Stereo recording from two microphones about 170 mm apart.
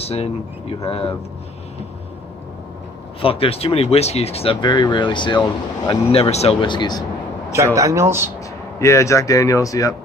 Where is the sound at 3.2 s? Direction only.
35° left (ahead or behind).